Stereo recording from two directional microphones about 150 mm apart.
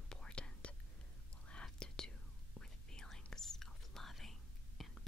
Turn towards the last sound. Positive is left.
turn(degrees=0)  # may be behind; listen again after turning